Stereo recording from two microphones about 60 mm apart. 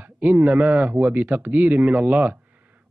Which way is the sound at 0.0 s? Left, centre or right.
Right.